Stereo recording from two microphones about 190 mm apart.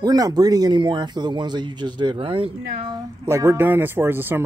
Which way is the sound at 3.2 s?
15° right (ahead or behind).